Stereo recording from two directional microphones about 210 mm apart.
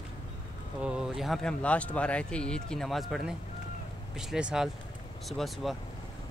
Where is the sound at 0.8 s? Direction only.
5° right (ahead or behind).